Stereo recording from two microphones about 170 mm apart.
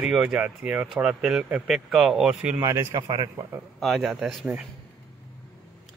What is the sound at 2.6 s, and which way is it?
A man's voice, 20° right (ahead or behind).